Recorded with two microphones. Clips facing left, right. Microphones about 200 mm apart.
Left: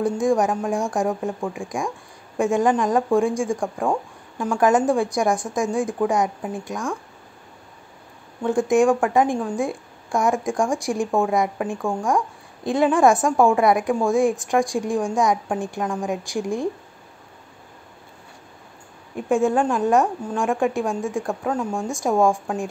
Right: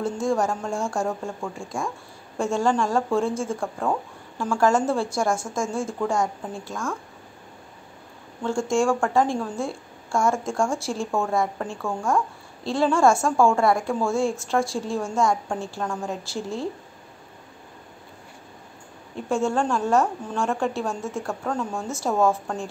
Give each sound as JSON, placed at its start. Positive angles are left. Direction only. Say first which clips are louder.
{"t": 0.0, "sound": "a woman's voice", "louder": "left 4 dB", "side_deg": 15}
{"t": 8.4, "sound": "a woman's voice", "louder": "left 5 dB", "side_deg": 15}
{"t": 19.1, "sound": "a woman's voice", "louder": "left 4 dB", "side_deg": 15}